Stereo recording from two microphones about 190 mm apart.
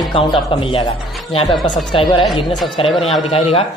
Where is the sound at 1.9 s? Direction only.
25° left (ahead or behind).